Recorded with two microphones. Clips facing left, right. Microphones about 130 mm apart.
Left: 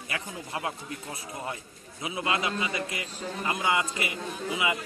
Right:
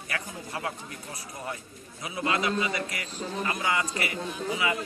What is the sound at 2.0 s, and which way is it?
A man's voice, 20° left (ahead or behind).